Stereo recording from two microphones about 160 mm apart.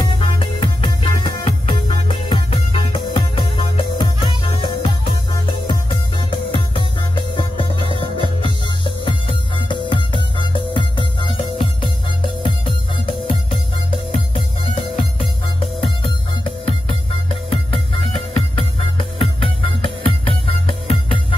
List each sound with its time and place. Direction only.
0.2 s music: 35° left (ahead or behind)